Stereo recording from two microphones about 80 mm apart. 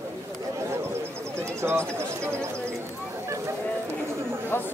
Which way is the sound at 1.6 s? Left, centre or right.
Right.